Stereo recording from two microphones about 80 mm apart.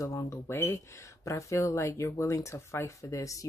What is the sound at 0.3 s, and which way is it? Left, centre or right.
Speech, left.